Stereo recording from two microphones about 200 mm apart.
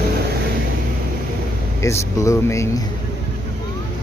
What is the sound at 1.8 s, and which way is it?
Speech, 15° left (ahead or behind).